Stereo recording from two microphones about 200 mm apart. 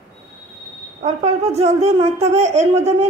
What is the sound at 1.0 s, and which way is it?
A woman's voice, 35° right (ahead or behind).